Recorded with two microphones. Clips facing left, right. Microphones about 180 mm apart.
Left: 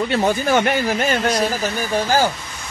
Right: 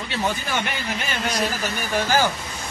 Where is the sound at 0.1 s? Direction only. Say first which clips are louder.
Left 6 dB; 45° left (ahead or behind).